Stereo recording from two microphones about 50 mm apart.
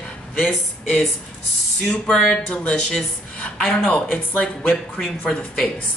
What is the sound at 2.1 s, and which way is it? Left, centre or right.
Speech, centre.